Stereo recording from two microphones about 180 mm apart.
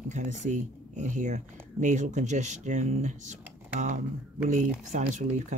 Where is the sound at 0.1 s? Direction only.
40° right (ahead or behind).